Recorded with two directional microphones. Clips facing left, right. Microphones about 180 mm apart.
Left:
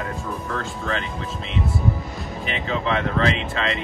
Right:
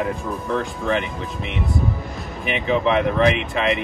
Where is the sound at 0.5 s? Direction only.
15° right (ahead or behind).